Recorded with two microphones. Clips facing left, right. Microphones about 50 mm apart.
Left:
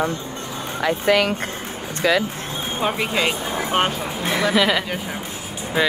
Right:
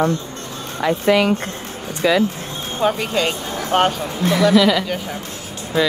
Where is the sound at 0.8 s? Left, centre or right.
Left.